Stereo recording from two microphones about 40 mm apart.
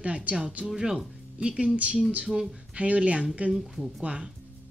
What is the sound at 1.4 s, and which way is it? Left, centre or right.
Speech, right.